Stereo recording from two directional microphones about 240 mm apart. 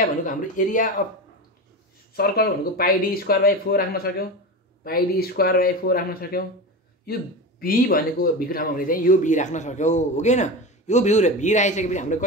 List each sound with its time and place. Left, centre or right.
0.2 s speech: left
2.1 s speech: left